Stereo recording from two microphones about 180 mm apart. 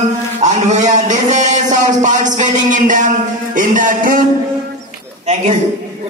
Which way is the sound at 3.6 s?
45° right (ahead or behind).